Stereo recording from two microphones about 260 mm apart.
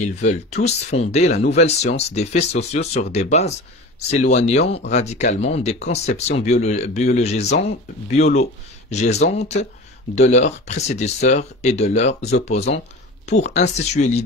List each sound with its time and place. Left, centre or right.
0.0 s speech: left